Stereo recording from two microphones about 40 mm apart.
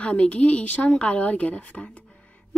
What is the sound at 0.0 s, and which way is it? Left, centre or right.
A woman's voice, left.